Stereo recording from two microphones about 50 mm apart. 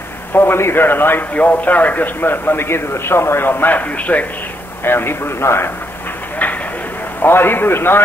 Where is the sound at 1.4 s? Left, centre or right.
Left.